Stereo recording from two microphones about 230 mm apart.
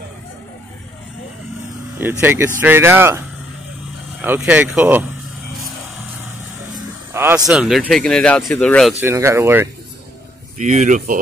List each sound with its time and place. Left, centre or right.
2.0 s speech: centre
4.2 s speech: centre
7.2 s speech: centre
9.0 s speech: centre
10.6 s speech: right